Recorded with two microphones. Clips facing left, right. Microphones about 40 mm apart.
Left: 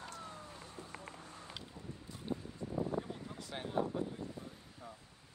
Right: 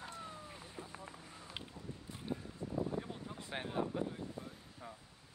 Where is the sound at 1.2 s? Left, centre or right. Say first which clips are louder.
Left 2 dB; centre.